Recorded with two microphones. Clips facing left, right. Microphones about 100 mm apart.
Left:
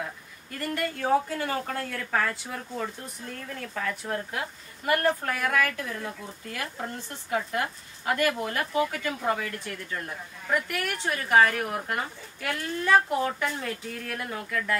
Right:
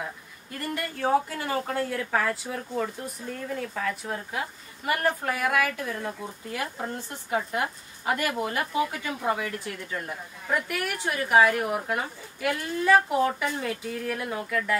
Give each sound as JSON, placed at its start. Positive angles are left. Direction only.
{"t": 1.4, "sound": "speech", "side_deg": -15}